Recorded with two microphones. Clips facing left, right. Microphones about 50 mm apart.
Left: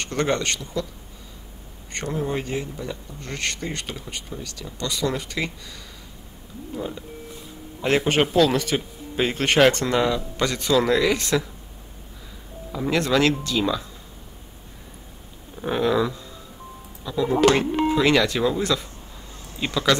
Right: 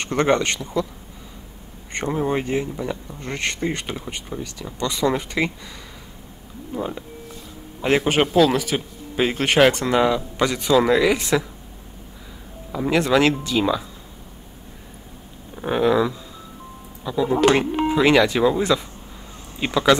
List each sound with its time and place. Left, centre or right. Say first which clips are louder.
0.0 s speech: right 4 dB; right
1.9 s speech: right 4 dB; right
6.7 s speech: right 3 dB; right
7.8 s speech: right 2 dB; centre
12.7 s speech: right 3 dB; centre
15.5 s speech: right 3 dB; centre